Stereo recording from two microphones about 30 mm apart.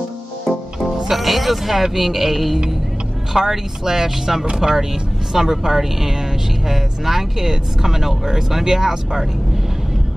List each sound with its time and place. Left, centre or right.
1.0 s speech: centre